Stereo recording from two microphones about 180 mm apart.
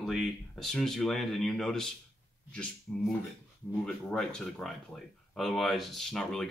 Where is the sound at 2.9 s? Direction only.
5° left (ahead or behind).